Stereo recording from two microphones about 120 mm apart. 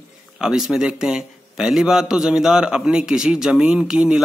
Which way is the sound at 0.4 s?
5° right (ahead or behind).